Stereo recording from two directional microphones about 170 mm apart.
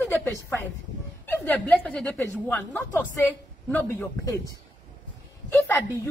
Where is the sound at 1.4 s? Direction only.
10° left (ahead or behind).